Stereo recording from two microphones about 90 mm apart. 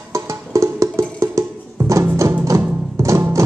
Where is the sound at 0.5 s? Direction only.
35° right (ahead or behind).